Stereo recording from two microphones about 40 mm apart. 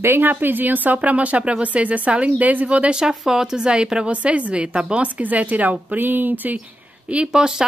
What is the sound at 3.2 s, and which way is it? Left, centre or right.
Speech, centre.